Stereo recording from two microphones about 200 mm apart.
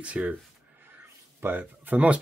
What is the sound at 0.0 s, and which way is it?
Speech, 5° right (ahead or behind).